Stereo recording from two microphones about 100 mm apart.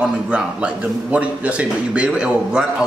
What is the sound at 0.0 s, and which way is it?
A man's voice, 10° right (ahead or behind).